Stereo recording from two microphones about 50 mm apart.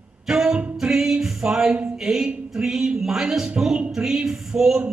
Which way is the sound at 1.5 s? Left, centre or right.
Centre.